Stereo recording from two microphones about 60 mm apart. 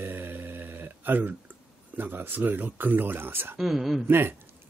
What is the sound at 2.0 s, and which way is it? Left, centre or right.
Speech, right.